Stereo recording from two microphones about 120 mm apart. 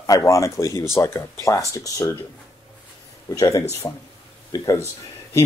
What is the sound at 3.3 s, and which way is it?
Speech, 30° left (ahead or behind).